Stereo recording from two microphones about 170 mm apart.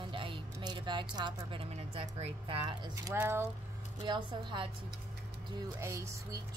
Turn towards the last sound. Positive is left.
turn(degrees=-15)  # may be behind; listen again after turning